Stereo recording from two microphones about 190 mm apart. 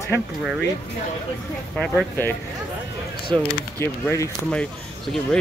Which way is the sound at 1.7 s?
Centre (ahead or behind).